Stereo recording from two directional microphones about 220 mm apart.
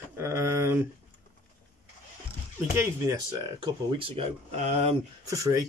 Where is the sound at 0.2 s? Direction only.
10° right (ahead or behind).